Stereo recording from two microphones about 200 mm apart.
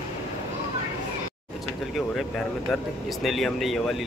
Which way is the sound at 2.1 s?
Centre (ahead or behind).